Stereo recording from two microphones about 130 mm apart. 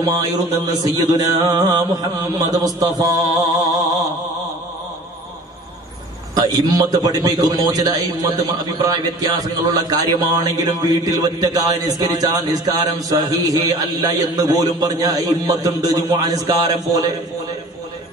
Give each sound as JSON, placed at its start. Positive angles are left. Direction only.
{"t": 0.0, "sound": "a man's voice", "side_deg": -30}
{"t": 6.3, "sound": "a man's voice", "side_deg": -25}